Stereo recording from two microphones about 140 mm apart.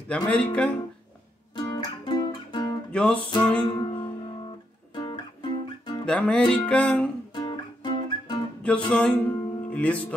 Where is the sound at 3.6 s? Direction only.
35° left (ahead or behind).